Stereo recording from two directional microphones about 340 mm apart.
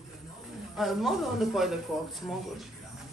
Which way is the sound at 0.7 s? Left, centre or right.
Centre.